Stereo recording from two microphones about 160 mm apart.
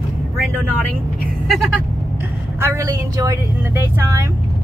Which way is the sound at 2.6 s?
20° right (ahead or behind).